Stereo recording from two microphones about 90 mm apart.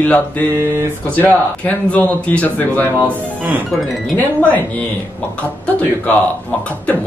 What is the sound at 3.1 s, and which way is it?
Speech, 20° right (ahead or behind).